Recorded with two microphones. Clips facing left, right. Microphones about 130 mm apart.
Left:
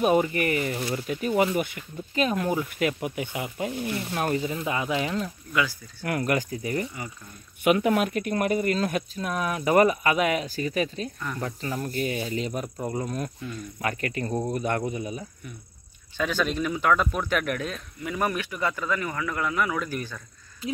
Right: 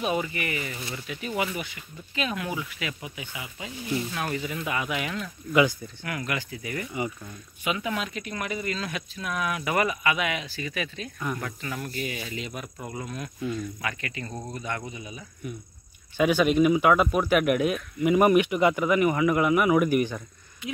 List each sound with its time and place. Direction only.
0.0 s speech: 45° left (ahead or behind)
0.7 s speech: 25° left (ahead or behind)
1.0 s speech: 45° left (ahead or behind)
1.3 s speech: 30° left (ahead or behind)
1.6 s speech: 45° left (ahead or behind)
5.5 s speech: 20° right (ahead or behind)
6.0 s speech: 45° left (ahead or behind)
7.6 s speech: 55° left (ahead or behind); by 14.5 s 35° left (ahead or behind)
14.5 s speech: 60° left (ahead or behind)
14.9 s speech: 40° left (ahead or behind)
16.2 s a man's voice: 10° right (ahead or behind)